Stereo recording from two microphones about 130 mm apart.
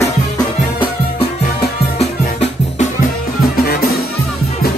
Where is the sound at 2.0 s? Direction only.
55° left (ahead or behind).